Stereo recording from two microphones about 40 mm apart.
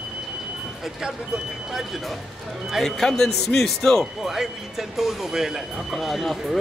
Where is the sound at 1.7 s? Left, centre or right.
Centre.